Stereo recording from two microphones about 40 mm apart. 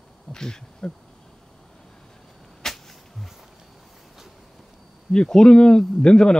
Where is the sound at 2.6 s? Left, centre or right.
Centre.